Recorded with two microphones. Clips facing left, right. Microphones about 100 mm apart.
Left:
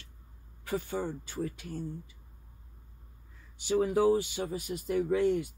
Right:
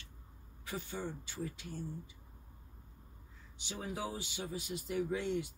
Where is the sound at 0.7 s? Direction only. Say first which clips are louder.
Left 8 dB; 50° left (ahead or behind).